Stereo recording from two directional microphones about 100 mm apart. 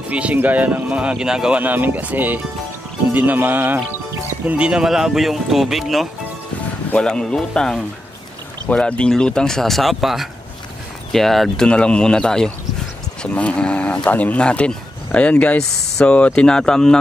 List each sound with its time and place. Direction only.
0.1 s speech: 15° right (ahead or behind)
1.6 s speech: 15° right (ahead or behind)
4.6 s speech: 10° right (ahead or behind)